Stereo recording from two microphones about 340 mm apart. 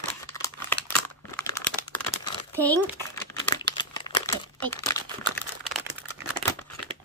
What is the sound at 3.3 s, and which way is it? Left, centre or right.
Crumpling, centre.